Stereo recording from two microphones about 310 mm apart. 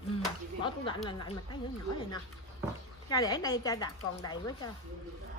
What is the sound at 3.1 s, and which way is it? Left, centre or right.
A woman's voice, centre.